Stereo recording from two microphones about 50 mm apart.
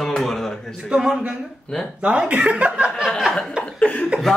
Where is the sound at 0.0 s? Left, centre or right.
Centre.